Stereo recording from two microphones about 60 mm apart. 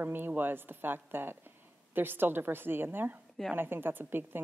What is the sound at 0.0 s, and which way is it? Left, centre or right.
A woman's voice, right.